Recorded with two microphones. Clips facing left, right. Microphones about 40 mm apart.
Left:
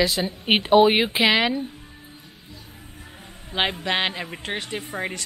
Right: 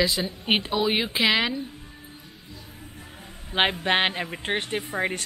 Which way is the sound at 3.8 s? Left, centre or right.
Right.